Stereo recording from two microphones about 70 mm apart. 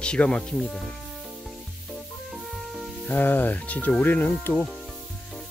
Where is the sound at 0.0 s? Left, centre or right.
Centre.